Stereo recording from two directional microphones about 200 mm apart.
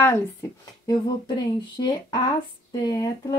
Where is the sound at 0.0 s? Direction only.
15° left (ahead or behind).